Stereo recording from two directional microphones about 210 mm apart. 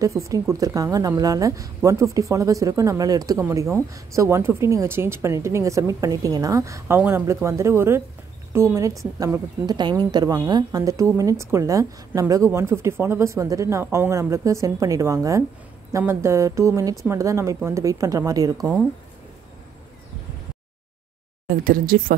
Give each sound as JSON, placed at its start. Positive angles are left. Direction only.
{"t": 0.0, "sound": "speech", "side_deg": -15}
{"t": 21.5, "sound": "speech", "side_deg": -40}